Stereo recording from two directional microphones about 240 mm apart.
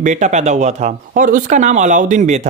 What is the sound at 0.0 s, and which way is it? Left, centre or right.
Speech, right.